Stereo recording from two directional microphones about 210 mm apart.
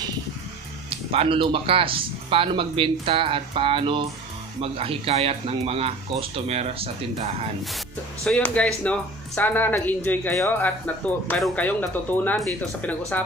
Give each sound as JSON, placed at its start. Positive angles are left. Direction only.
{"t": 0.8, "sound": "speech", "side_deg": -25}
{"t": 8.2, "sound": "speech", "side_deg": 5}